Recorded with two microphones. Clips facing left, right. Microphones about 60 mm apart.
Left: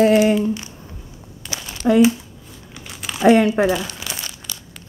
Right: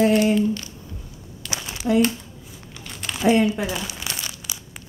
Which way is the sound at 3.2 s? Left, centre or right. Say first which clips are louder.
Left 5 dB; left.